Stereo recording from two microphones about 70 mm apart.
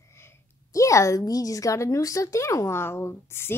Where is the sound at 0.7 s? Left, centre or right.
Left.